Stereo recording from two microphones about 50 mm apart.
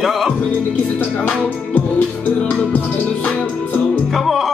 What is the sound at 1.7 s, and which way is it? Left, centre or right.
Music, left.